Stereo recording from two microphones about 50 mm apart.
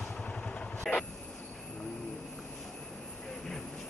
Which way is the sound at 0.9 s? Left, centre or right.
Centre.